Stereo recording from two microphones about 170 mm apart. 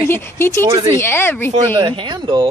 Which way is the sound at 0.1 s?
15° left (ahead or behind).